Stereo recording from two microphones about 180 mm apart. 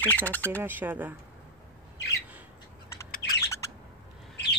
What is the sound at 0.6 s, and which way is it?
Speech, 10° right (ahead or behind).